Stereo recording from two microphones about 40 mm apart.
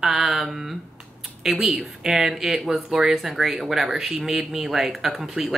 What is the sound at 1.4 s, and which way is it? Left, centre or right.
Speech, centre.